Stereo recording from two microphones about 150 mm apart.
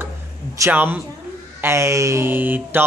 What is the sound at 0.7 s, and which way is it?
Speech, 10° right (ahead or behind).